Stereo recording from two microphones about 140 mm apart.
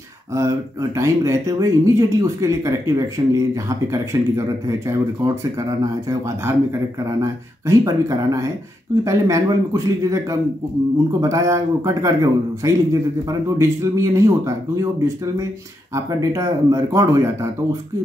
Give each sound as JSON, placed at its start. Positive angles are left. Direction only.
{"t": 0.3, "sound": "speech", "side_deg": -25}